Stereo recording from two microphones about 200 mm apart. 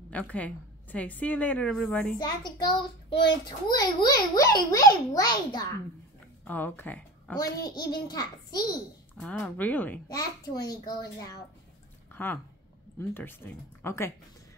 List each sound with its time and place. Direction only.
0.1 s a woman's voice: 5° left (ahead or behind)
2.1 s a child's voice: 20° left (ahead or behind)
6.4 s a child's voice: 10° left (ahead or behind)
9.1 s speech: 5° left (ahead or behind)
12.1 s a sound: 10° left (ahead or behind)
13.1 s speech: 10° left (ahead or behind)